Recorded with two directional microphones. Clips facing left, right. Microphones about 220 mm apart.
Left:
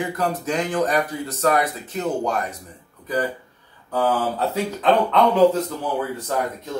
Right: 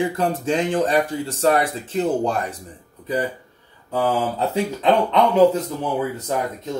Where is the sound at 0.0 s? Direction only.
30° right (ahead or behind).